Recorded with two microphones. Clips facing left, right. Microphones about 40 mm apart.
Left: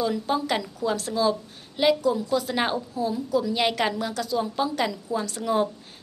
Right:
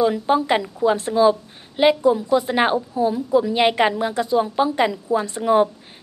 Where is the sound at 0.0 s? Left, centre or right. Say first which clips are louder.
Right 7 dB; right.